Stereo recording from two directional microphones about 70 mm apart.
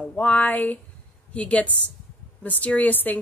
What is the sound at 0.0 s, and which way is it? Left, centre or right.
A woman's voice, left.